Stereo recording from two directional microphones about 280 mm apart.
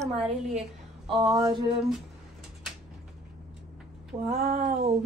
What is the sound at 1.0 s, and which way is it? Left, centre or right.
Speech, centre.